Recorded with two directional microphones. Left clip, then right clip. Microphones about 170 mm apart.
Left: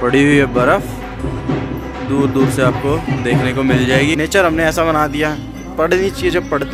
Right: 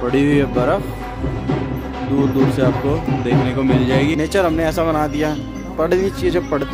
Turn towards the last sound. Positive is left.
turn(degrees=-5)  # may be behind; listen again after turning